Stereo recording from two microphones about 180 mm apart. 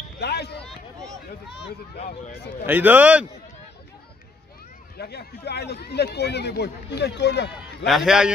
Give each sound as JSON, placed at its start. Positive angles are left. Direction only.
{"t": 0.2, "sound": "a sound", "side_deg": 65}
{"t": 2.6, "sound": "a man's voice", "side_deg": -10}
{"t": 4.9, "sound": "speech", "side_deg": 60}
{"t": 7.8, "sound": "a man's voice", "side_deg": 0}